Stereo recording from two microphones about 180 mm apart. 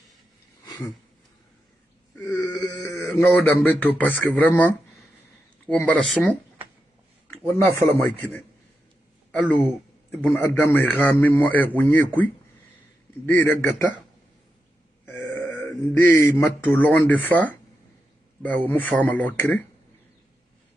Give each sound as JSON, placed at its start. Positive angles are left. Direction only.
{"t": 0.7, "sound": "a sound", "side_deg": 20}
{"t": 2.1, "sound": "wail", "side_deg": 10}
{"t": 2.4, "sound": "wail", "side_deg": 25}
{"t": 3.1, "sound": "a man's voice", "side_deg": 10}
{"t": 7.2, "sound": "a sound", "side_deg": 10}
{"t": 8.0, "sound": "a man's voice", "side_deg": 10}
{"t": 15.0, "sound": "a man's voice", "side_deg": 10}